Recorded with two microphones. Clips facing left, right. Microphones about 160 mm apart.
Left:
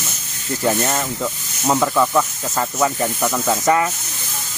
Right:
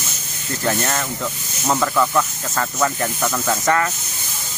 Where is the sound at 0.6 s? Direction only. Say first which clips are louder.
Left 2 dB; 10° left (ahead or behind).